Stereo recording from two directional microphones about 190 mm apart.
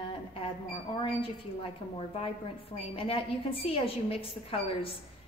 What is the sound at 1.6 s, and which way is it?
A woman's voice, 30° left (ahead or behind).